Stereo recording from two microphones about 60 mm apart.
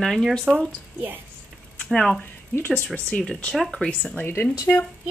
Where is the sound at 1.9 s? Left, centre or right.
Centre.